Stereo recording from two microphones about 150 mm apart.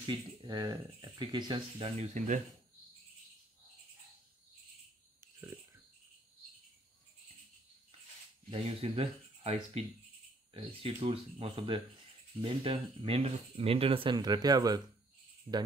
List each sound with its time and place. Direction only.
0.0 s speech: 30° right (ahead or behind)
2.0 s speech: 55° right (ahead or behind)
5.2 s a sound: 20° right (ahead or behind)
8.5 s speech: 40° right (ahead or behind)